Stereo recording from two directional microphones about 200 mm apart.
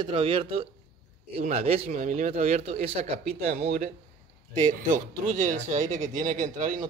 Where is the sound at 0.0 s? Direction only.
25° right (ahead or behind).